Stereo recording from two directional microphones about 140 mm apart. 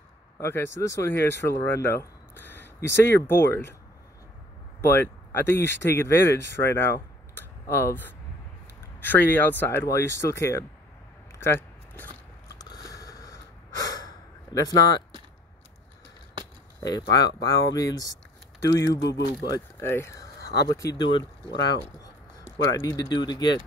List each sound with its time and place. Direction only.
0.4 s speech: 20° left (ahead or behind)
4.8 s speech: 15° left (ahead or behind)
12.5 s snort: 25° left (ahead or behind)
17.1 s speech: 25° left (ahead or behind)
22.8 s speech: 30° left (ahead or behind)